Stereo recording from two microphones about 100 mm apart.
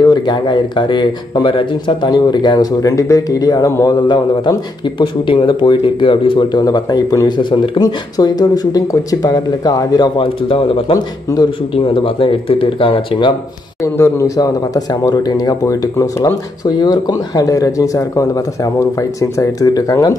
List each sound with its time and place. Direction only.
0.0 s speech: 45° left (ahead or behind)
2.8 s speech: 35° left (ahead or behind)
3.9 s speech: 50° left (ahead or behind)
6.6 s speech: 40° left (ahead or behind); by 7.8 s 60° left (ahead or behind)
7.8 s speech: 40° left (ahead or behind); by 10.8 s 60° left (ahead or behind)
10.9 s speech: 40° left (ahead or behind)
11.7 s speech: 60° left (ahead or behind)
13.9 s speech: 25° left (ahead or behind)
16.8 s speech: 45° left (ahead or behind)